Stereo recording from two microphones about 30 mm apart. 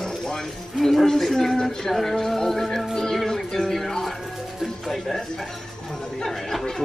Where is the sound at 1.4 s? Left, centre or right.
Centre.